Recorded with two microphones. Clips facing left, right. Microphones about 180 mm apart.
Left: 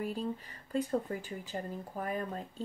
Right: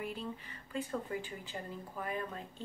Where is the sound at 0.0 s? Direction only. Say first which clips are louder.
Left 5 dB; 40° left (ahead or behind).